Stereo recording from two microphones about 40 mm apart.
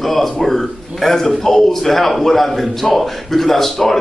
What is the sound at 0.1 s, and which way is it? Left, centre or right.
Speech, centre.